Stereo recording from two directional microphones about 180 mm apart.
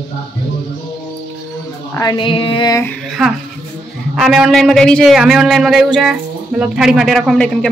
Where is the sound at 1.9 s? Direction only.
20° left (ahead or behind).